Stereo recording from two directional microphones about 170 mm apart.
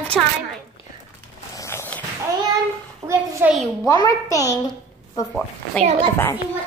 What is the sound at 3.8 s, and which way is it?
Speech, 20° left (ahead or behind).